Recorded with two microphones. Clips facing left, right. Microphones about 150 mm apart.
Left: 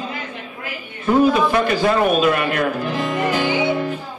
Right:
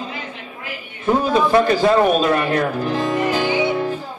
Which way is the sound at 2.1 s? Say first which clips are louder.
Even; 30° right (ahead or behind).